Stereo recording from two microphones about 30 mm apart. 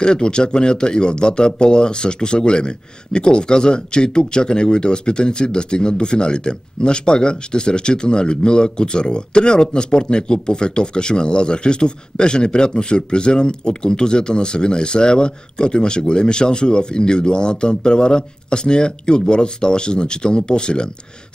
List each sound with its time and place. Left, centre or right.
0.0 s speech: left